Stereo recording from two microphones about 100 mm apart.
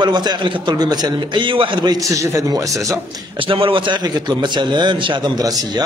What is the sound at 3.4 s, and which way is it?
A man's voice, 60° right (ahead or behind).